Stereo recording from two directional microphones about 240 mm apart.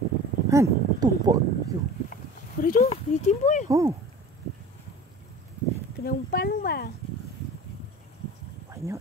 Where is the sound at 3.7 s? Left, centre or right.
Centre.